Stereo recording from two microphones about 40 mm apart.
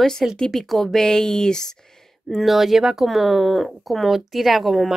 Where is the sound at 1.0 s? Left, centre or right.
Centre.